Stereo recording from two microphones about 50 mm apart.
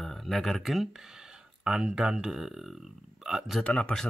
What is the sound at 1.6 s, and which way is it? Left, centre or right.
Speech, centre.